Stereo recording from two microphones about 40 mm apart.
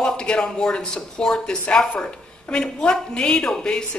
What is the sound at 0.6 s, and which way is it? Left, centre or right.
A woman's voice, centre.